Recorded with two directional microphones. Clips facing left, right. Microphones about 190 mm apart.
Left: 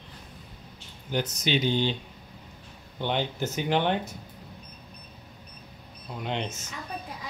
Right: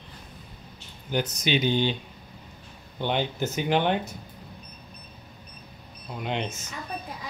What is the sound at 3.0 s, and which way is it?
Speech, 15° right (ahead or behind).